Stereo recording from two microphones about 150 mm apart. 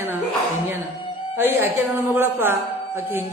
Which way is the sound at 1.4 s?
15° right (ahead or behind).